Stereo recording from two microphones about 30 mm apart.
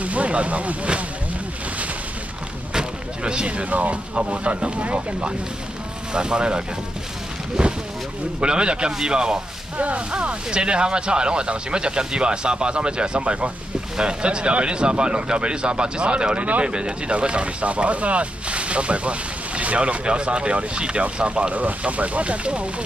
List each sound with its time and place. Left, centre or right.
0.0 s a sound: right
2.7 s a sound: right
3.4 s speech: right
6.1 s speech: right
9.8 s speech: right
10.1 s speech: right
20.1 s speech: right
21.5 s speech: right